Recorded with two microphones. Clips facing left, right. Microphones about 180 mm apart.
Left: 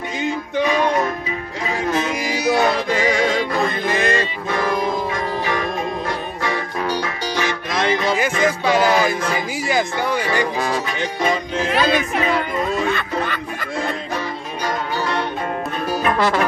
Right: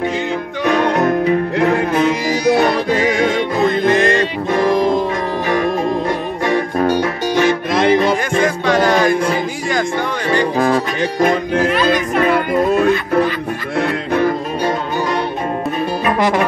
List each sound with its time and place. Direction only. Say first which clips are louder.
0.7 s music: right 6 dB; 65° right (ahead or behind)
3.6 s music: right 7 dB; centre (ahead or behind)
6.5 s music: right 9 dB; 50° right (ahead or behind)
8.6 s music: right 2 dB; 5° left (ahead or behind)
10.6 s music: right 7 dB; 55° right (ahead or behind)
16.2 s music: right 4 dB; 15° right (ahead or behind)